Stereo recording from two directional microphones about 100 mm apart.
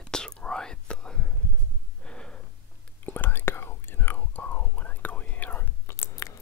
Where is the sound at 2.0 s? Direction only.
10° left (ahead or behind).